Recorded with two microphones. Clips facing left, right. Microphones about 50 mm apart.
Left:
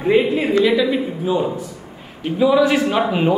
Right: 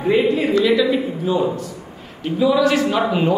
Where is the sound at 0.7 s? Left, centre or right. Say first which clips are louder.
Even; centre.